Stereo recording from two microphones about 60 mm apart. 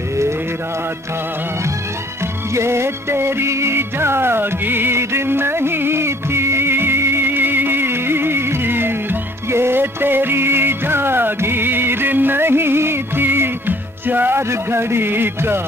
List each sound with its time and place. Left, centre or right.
2.5 s music: right
14.5 s a man's voice: right